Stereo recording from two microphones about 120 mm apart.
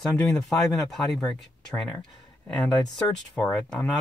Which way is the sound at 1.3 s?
5° left (ahead or behind).